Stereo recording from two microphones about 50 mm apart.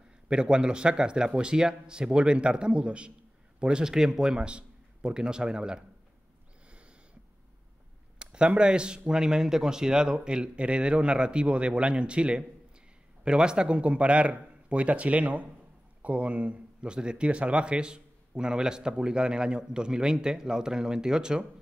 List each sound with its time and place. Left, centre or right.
0.3 s a man's voice: centre
8.2 s speech: centre